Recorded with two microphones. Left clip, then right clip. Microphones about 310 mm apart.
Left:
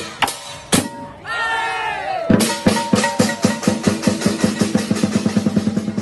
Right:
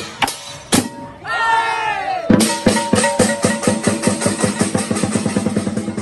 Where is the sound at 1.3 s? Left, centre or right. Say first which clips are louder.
Right 4 dB; centre.